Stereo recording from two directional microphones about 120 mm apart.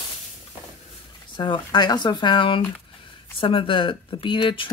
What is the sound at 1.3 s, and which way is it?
Speech, 40° left (ahead or behind).